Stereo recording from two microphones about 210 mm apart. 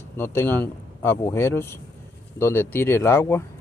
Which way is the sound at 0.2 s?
10° left (ahead or behind).